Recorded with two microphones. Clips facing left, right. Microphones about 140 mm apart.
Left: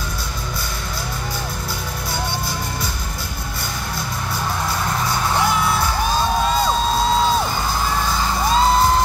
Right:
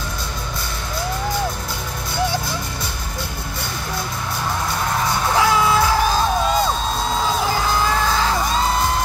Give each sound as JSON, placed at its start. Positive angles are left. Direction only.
{"t": 5.4, "sound": "music", "side_deg": -90}